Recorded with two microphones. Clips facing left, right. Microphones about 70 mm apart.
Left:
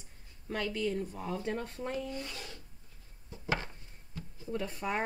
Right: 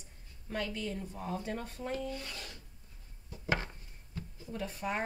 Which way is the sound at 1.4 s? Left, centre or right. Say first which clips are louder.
Left 3 dB; left.